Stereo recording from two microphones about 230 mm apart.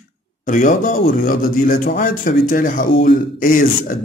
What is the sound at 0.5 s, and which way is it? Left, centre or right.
A man's voice, left.